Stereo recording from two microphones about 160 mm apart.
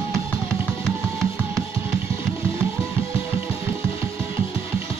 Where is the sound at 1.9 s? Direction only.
15° right (ahead or behind).